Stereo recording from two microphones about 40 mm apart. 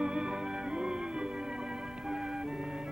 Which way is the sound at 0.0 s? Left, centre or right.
Centre.